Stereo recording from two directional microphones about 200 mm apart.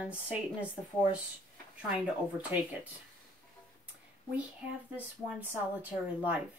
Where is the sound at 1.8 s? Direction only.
5° right (ahead or behind).